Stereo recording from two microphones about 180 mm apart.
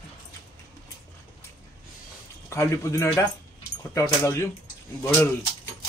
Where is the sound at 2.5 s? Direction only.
15° left (ahead or behind).